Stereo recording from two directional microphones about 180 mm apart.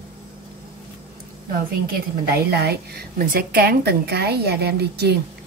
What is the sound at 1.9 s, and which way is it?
Speech, 65° right (ahead or behind).